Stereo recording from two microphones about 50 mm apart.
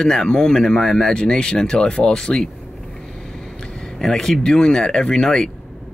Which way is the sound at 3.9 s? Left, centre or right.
Centre.